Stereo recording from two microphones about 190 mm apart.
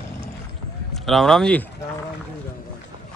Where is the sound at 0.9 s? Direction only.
Centre (ahead or behind).